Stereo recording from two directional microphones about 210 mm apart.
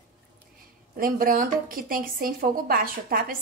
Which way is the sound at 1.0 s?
40° right (ahead or behind).